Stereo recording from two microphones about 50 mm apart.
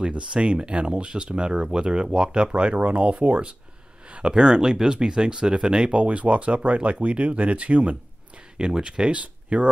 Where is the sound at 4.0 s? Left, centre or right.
Centre.